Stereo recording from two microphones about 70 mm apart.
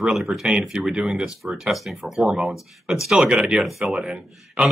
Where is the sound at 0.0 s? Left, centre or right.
Centre.